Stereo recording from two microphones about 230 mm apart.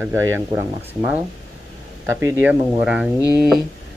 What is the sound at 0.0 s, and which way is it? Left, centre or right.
Speech, centre.